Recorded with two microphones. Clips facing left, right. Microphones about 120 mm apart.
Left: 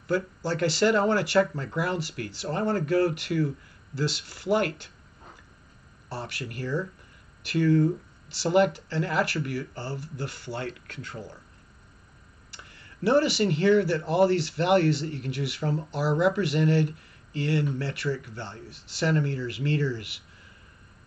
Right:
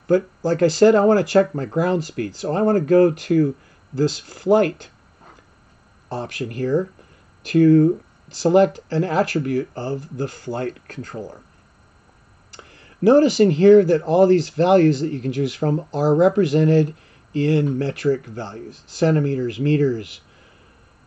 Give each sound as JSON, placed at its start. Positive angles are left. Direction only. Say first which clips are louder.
{"t": 0.0, "sound": "speech", "louder": "right 9 dB", "side_deg": -45}
{"t": 6.2, "sound": "speech", "louder": "right 12 dB", "side_deg": -45}
{"t": 13.0, "sound": "speech", "louder": "right 9 dB", "side_deg": -45}